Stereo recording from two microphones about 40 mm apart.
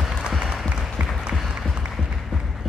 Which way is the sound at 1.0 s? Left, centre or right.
Right.